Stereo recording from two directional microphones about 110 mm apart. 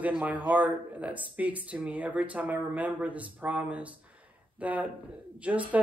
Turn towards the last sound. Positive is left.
turn(degrees=-15)  # may be behind; listen again after turning